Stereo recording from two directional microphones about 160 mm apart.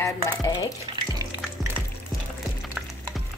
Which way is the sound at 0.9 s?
25° right (ahead or behind).